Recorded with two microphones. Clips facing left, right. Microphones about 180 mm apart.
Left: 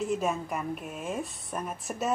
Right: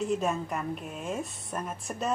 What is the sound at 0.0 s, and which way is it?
A woman's voice, centre (ahead or behind).